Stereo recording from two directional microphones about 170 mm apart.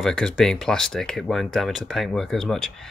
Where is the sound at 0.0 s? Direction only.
5° left (ahead or behind).